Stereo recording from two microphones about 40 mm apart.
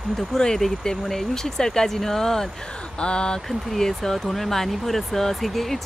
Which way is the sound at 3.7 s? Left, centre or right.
Centre.